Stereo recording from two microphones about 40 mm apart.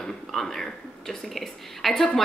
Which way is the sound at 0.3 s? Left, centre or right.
Centre.